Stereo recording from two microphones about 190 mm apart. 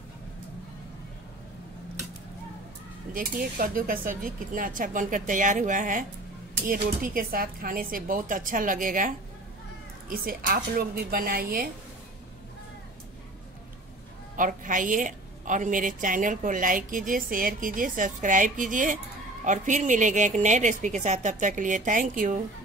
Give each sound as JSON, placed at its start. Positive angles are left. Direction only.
{"t": 3.1, "sound": "a woman's voice", "side_deg": -50}
{"t": 14.3, "sound": "a woman's voice", "side_deg": -45}